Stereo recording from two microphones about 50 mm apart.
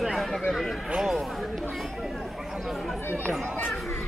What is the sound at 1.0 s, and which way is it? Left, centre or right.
Chatter, centre.